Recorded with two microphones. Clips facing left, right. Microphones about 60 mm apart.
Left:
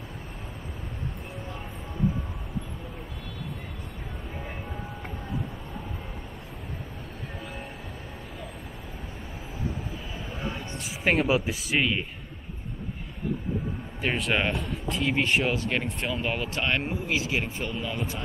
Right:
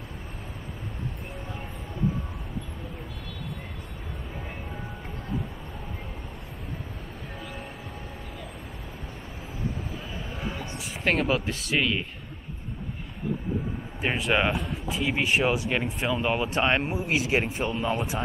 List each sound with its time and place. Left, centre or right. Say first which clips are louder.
11.1 s speech: left 1 dB; centre
14.0 s speech: right 2 dB; centre
16.5 s speech: right 3 dB; right